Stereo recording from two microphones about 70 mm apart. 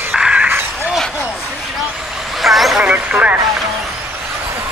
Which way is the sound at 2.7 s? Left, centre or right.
Centre.